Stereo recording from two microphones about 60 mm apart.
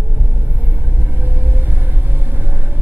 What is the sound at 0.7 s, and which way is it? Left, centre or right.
Vehicle, right.